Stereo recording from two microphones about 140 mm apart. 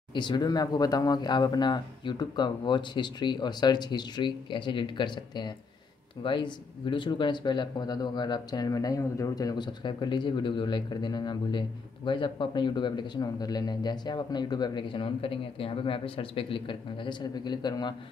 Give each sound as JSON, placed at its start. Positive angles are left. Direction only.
{"t": 0.1, "sound": "speech", "side_deg": 30}